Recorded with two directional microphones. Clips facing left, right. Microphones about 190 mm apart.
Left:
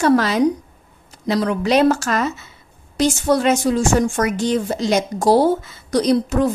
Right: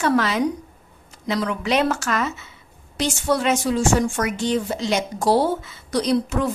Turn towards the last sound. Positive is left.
turn(degrees=40)  # may be behind; listen again after turning